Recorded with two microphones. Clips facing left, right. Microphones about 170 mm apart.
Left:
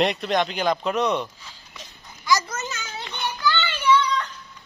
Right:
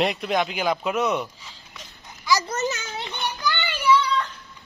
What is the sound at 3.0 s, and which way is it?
Child singing, 15° right (ahead or behind).